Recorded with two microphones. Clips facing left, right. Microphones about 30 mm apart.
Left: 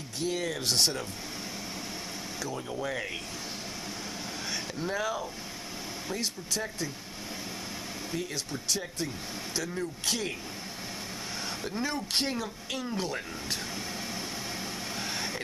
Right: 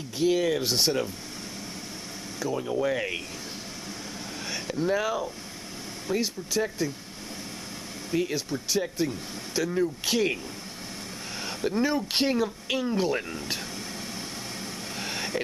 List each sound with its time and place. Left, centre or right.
0.2 s speech: centre
2.4 s speech: centre
4.5 s speech: centre
8.1 s speech: centre
8.5 s speech: centre
11.4 s speech: centre
15.0 s vehicle: centre